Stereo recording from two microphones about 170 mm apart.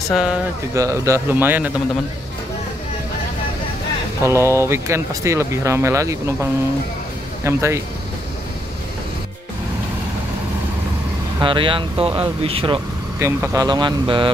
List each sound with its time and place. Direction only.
0.1 s speech: 5° right (ahead or behind)
0.7 s speech: 20° right (ahead or behind)
4.2 s speech: 15° right (ahead or behind)
7.4 s speech: 15° right (ahead or behind)
11.3 s speech: 30° right (ahead or behind)
13.2 s speech: 15° right (ahead or behind)